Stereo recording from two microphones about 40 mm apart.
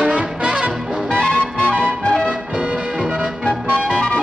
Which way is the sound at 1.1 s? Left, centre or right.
Left.